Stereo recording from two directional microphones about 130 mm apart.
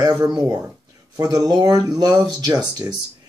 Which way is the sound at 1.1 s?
30° right (ahead or behind).